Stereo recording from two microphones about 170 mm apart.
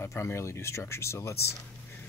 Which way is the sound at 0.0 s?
15° left (ahead or behind).